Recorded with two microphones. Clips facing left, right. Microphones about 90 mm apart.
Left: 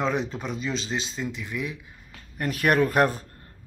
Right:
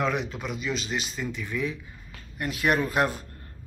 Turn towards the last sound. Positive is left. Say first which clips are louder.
# left 4 dB
turn(degrees=40)  # may be behind; listen again after turning